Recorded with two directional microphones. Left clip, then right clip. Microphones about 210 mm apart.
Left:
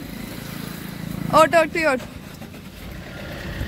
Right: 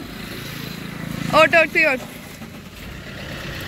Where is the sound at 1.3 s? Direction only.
20° left (ahead or behind).